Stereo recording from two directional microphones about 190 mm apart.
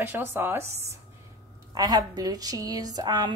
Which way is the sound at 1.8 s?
20° right (ahead or behind).